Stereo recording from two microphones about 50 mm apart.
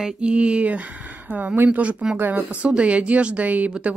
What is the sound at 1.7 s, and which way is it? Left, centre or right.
Speech, right.